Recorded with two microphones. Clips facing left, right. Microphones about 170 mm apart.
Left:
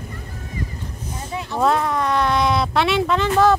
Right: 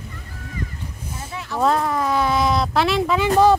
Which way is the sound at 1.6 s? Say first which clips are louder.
Even; centre (ahead or behind).